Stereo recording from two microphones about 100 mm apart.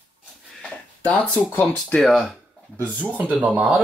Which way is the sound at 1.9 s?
Centre (ahead or behind).